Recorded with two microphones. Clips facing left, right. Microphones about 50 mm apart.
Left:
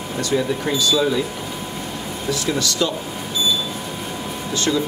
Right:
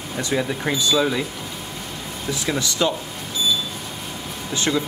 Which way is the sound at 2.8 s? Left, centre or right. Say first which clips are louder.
Right 2 dB; right.